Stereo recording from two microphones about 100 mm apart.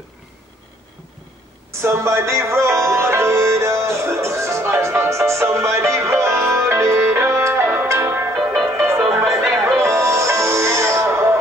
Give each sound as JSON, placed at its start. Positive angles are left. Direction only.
{"t": 1.7, "sound": "music", "side_deg": -30}